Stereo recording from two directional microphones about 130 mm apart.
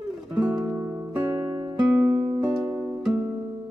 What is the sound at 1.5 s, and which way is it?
Music, 30° right (ahead or behind).